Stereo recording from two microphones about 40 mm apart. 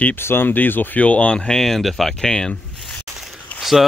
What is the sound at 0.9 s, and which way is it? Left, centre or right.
Speech, left.